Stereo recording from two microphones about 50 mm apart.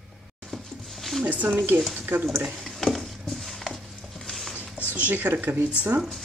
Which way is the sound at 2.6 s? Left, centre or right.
Centre.